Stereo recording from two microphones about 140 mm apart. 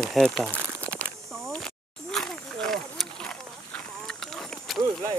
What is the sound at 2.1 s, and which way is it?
Wild animals, 5° left (ahead or behind).